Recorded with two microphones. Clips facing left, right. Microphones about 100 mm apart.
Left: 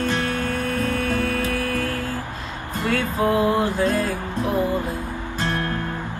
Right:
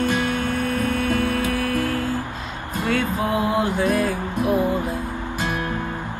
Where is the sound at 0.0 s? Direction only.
15° right (ahead or behind).